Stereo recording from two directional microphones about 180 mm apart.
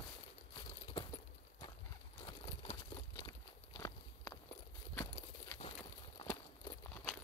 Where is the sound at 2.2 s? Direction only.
25° left (ahead or behind).